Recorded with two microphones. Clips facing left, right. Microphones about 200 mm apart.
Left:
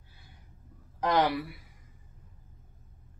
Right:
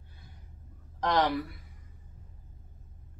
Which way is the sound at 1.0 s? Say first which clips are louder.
Left 1 dB; 10° left (ahead or behind).